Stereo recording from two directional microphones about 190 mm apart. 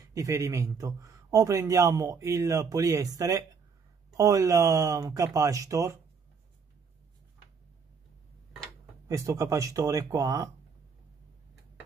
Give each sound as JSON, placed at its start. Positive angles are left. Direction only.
{"t": 0.1, "sound": "a man's voice", "side_deg": -15}
{"t": 9.0, "sound": "a man's voice", "side_deg": -15}